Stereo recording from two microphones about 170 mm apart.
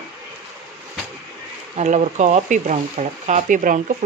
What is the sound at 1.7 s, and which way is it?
Speech, 45° right (ahead or behind).